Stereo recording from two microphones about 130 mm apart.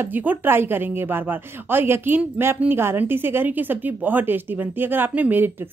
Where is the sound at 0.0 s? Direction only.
15° right (ahead or behind).